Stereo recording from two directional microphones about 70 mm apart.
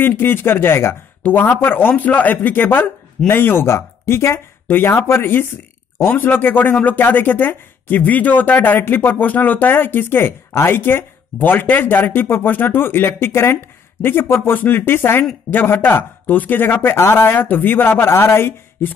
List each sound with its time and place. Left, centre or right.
0.0 s speech: left